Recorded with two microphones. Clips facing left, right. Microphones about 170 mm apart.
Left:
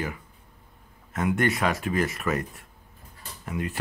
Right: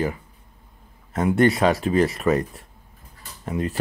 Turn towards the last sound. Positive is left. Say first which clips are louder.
# right 5 dB
turn(degrees=-35)  # may be behind; listen again after turning